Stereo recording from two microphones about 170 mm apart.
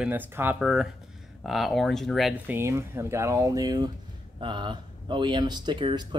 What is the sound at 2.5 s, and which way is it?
Speech, 15° right (ahead or behind).